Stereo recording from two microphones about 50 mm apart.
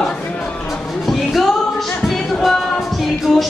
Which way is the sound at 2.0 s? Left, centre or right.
Centre.